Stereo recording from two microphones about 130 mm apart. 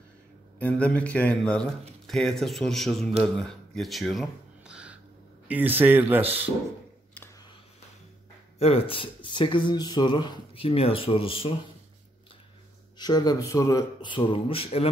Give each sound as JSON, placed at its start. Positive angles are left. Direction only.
{"t": 0.6, "sound": "speech", "side_deg": 10}
{"t": 3.3, "sound": "music", "side_deg": 5}
{"t": 5.5, "sound": "speech", "side_deg": -15}
{"t": 8.5, "sound": "speech", "side_deg": 50}
{"t": 12.9, "sound": "speech", "side_deg": 30}
{"t": 14.0, "sound": "speech", "side_deg": 40}